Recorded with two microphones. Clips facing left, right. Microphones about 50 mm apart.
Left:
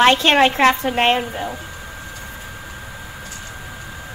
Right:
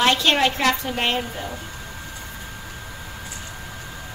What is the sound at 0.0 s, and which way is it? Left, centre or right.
A woman's voice, left.